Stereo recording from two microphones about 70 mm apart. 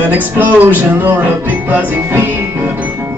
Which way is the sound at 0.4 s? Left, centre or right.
Right.